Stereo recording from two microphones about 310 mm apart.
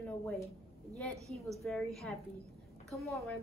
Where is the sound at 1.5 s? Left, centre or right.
Centre.